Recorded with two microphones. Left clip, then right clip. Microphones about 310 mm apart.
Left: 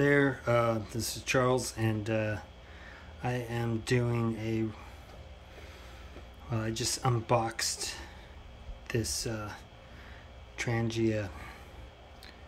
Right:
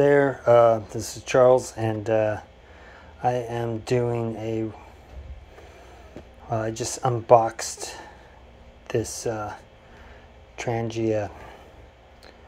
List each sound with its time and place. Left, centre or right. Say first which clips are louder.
0.0 s speech: right 8 dB; centre
6.5 s speech: right 7 dB; centre